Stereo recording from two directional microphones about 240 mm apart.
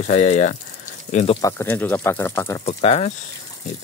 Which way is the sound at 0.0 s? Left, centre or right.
Left.